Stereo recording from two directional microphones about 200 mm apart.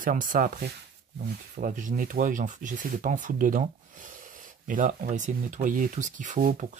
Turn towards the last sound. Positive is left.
turn(degrees=-40)  # may be behind; listen again after turning